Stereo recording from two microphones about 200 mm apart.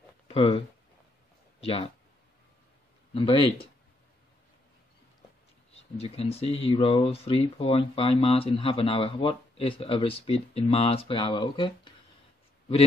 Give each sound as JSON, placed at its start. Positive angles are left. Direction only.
{"t": 0.3, "sound": "speech", "side_deg": 30}
{"t": 3.2, "sound": "speech", "side_deg": 25}
{"t": 5.7, "sound": "speech", "side_deg": 30}